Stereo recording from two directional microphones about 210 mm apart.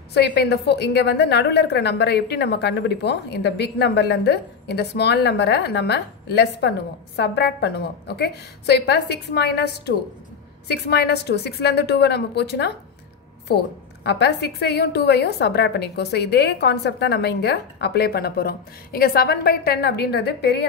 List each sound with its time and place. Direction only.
0.1 s a woman's voice: 50° left (ahead or behind)
14.0 s a woman's voice: 55° left (ahead or behind)